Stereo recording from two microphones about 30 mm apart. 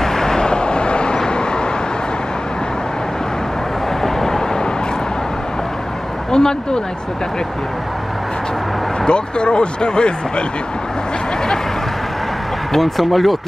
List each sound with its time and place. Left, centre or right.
0.0 s vehicle: centre; by 1.2 s left
4.0 s vehicle: centre
6.3 s a sound: left
9.0 s speech: left
12.7 s speech: centre